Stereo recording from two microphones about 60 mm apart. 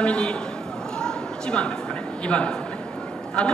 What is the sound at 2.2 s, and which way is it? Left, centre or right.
Speech, centre.